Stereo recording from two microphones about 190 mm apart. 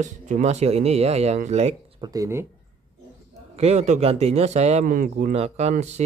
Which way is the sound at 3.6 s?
35° right (ahead or behind).